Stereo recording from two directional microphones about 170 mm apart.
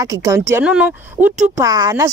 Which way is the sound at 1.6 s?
20° right (ahead or behind).